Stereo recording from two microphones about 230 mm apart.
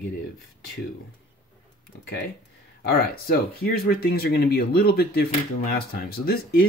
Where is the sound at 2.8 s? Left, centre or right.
Left.